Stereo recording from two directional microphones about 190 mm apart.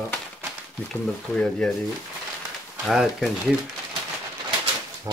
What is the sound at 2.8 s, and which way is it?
Speech, centre (ahead or behind).